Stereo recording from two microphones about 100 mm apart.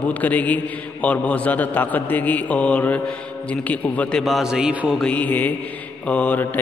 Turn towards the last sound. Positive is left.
turn(degrees=15)  # may be behind; listen again after turning